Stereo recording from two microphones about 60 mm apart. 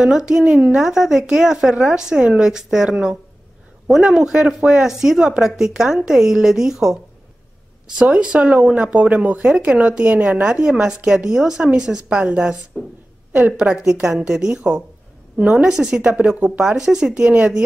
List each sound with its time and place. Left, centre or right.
0.0 s a woman's voice: centre
8.0 s speech: centre
10.4 s a woman's voice: centre
12.7 s a woman's voice: centre
13.6 s a woman's voice: centre